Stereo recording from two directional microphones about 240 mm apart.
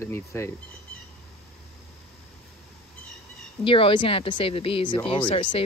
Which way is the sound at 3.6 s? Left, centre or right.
Left.